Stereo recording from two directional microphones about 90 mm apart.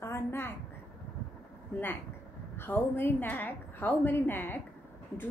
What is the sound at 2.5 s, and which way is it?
A woman's voice, 25° left (ahead or behind).